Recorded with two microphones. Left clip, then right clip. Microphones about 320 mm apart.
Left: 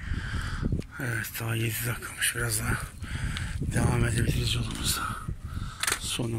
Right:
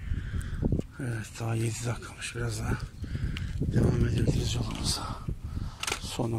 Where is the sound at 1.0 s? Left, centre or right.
Centre.